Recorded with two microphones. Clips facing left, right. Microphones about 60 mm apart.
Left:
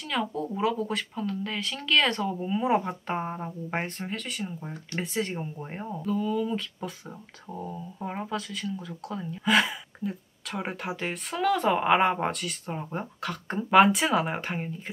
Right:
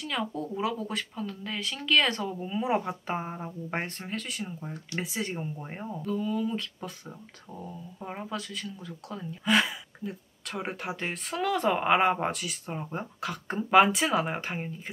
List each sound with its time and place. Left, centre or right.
0.1 s speech: centre
7.5 s speech: centre
8.3 s speech: centre